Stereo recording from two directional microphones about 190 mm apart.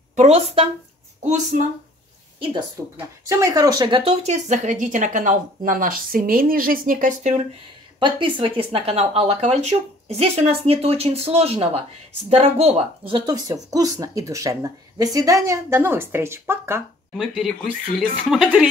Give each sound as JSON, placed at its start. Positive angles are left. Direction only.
{"t": 0.1, "sound": "speech", "side_deg": -35}
{"t": 3.3, "sound": "speech", "side_deg": -15}
{"t": 8.0, "sound": "speech", "side_deg": -25}
{"t": 17.1, "sound": "speech", "side_deg": 0}